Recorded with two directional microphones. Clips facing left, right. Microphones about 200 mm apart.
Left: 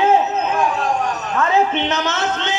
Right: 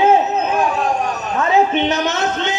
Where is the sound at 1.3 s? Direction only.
20° right (ahead or behind).